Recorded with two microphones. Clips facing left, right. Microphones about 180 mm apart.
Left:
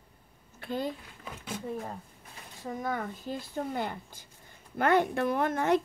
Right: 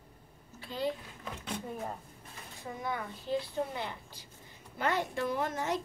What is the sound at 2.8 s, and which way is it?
A woman's voice, 45° left (ahead or behind).